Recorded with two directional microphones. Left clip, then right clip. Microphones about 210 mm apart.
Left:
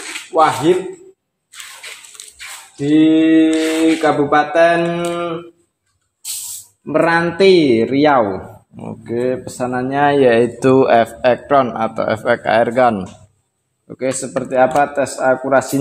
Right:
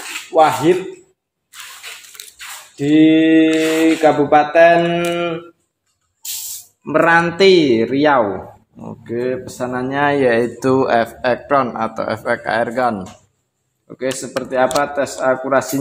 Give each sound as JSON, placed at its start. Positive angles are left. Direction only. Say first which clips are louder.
{"t": 0.0, "sound": "a sound", "louder": "right 1 dB", "side_deg": -20}
{"t": 3.6, "sound": "speech", "louder": "right 1 dB", "side_deg": -20}
{"t": 4.1, "sound": "mantra", "louder": "right 1 dB", "side_deg": -15}
{"t": 4.6, "sound": "mantra", "louder": "right 2 dB", "side_deg": -5}
{"t": 6.9, "sound": "a man's voice", "louder": "right 1 dB", "side_deg": 0}